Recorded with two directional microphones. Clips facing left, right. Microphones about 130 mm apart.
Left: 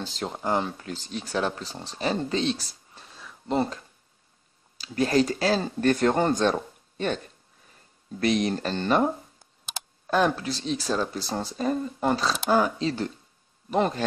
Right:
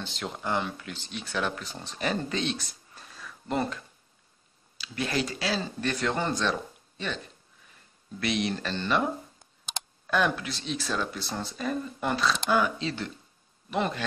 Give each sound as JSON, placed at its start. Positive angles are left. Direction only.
{"t": 0.0, "sound": "speech", "side_deg": 35}
{"t": 4.7, "sound": "speech", "side_deg": 40}
{"t": 8.2, "sound": "speech", "side_deg": 40}
{"t": 9.4, "sound": "a sound", "side_deg": 0}
{"t": 10.0, "sound": "speech", "side_deg": 35}